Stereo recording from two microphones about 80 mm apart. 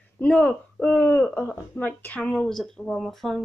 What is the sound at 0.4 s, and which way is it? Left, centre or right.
Speech, centre.